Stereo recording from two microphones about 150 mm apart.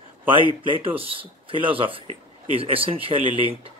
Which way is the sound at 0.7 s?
40° right (ahead or behind).